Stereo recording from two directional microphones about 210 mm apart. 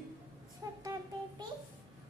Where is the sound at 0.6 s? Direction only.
15° right (ahead or behind).